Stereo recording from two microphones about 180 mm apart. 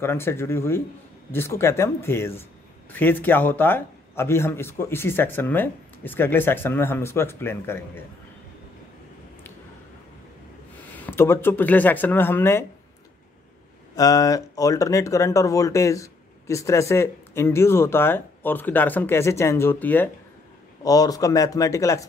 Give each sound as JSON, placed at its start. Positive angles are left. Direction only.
{"t": 0.0, "sound": "speech", "side_deg": 15}
{"t": 11.1, "sound": "speech", "side_deg": 15}
{"t": 13.9, "sound": "speech", "side_deg": 20}